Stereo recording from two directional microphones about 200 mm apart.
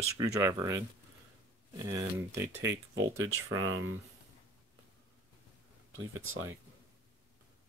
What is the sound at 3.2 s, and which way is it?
Speech, 90° right.